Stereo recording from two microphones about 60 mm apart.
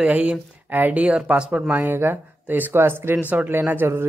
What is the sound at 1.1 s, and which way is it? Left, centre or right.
Speech, centre.